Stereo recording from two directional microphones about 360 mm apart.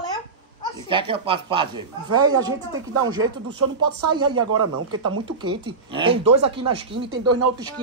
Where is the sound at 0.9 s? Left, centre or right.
Centre.